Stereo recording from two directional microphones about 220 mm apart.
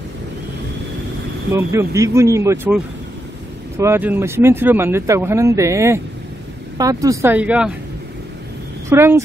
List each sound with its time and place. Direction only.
1.5 s speech: 10° right (ahead or behind)
8.8 s speech: 10° right (ahead or behind)